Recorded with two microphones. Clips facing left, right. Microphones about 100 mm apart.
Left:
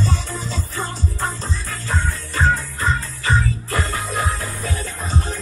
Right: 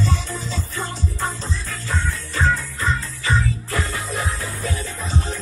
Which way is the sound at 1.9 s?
45° left (ahead or behind).